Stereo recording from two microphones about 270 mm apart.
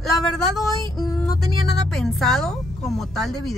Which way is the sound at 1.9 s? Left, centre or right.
Centre.